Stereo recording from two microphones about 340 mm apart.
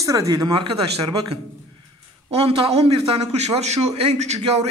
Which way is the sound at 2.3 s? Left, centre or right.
Centre.